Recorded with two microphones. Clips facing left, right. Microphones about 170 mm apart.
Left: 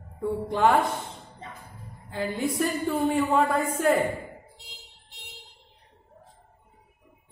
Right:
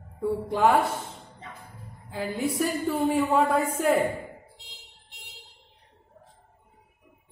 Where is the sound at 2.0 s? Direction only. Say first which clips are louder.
Even; 5° right (ahead or behind).